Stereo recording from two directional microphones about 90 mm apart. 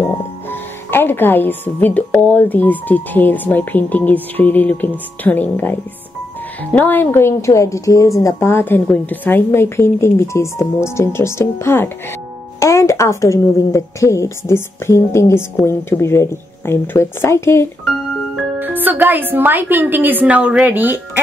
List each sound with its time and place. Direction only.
0.5 s a woman's voice: 25° left (ahead or behind)
18.6 s a woman's voice: 20° right (ahead or behind)